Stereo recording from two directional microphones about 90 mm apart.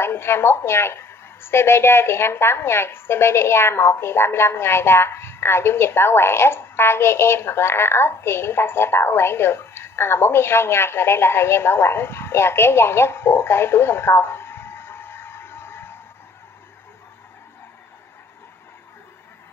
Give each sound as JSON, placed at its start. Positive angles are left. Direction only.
{"t": 0.0, "sound": "a woman's voice", "side_deg": 25}